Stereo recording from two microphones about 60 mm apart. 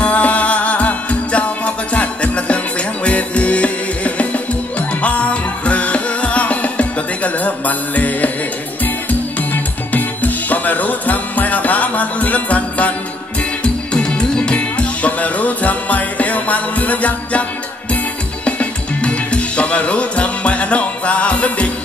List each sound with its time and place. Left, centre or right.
0.0 s music: left
9.5 s music: left
13.9 s music: centre